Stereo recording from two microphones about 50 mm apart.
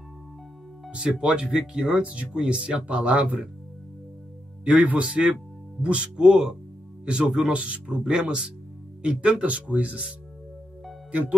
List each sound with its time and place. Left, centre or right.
0.9 s speech: right
4.6 s speech: right
5.0 s speech: centre
7.5 s speech: right